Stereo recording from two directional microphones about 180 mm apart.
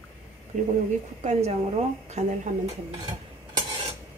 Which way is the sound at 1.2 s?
40° right (ahead or behind).